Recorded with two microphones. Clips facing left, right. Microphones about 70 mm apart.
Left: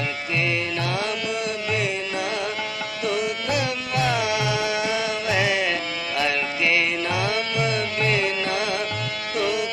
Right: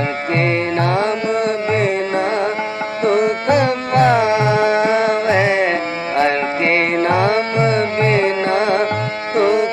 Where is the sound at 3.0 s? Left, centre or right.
Right.